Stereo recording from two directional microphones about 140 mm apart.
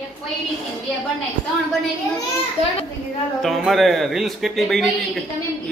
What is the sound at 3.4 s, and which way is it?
A man's voice, centre (ahead or behind).